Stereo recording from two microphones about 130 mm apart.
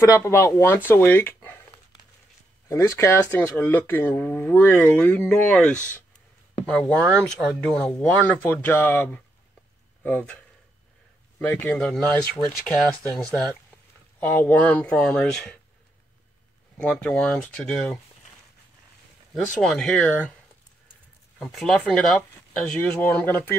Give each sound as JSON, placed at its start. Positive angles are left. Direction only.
{"t": 0.0, "sound": "speech", "side_deg": 20}
{"t": 2.7, "sound": "speech", "side_deg": 25}
{"t": 13.1, "sound": "speech", "side_deg": 10}
{"t": 16.7, "sound": "speech", "side_deg": 5}
{"t": 19.3, "sound": "speech", "side_deg": 5}
{"t": 21.4, "sound": "speech", "side_deg": 0}